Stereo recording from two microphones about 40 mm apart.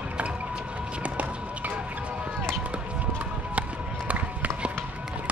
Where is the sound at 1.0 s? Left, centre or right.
Right.